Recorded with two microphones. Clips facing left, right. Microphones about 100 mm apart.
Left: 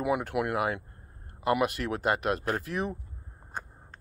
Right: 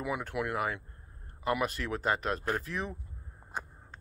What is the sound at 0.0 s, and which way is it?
Speech, 60° left (ahead or behind).